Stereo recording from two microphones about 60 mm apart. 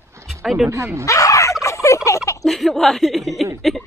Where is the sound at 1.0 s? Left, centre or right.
Left.